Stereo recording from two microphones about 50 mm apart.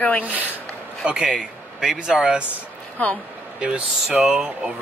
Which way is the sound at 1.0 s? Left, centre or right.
Centre.